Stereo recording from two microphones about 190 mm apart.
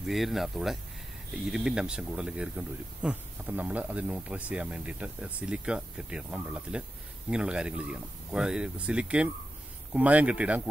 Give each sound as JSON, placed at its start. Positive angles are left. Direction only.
{"t": 0.0, "sound": "speech", "side_deg": 0}